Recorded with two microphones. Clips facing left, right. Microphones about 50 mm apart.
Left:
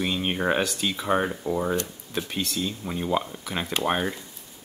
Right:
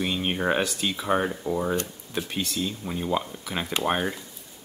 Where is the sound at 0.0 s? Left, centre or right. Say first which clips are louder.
Even; centre.